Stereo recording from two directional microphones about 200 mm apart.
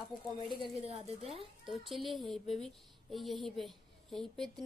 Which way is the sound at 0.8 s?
30° right (ahead or behind).